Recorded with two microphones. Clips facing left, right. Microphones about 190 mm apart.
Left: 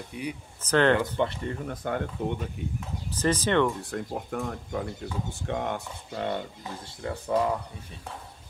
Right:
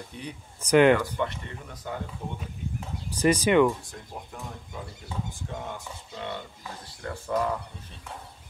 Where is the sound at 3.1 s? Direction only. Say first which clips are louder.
Right 3 dB; 10° right (ahead or behind).